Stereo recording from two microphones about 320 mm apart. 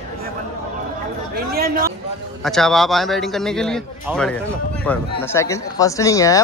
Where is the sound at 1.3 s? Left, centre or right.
Right.